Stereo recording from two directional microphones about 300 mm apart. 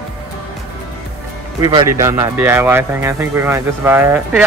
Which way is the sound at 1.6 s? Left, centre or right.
Centre.